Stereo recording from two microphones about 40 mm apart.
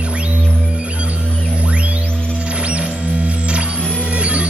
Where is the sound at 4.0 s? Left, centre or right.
Right.